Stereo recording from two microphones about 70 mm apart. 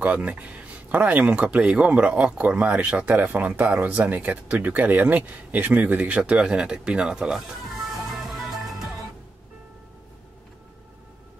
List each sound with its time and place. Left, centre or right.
0.0 s speech: centre
8.0 s music: centre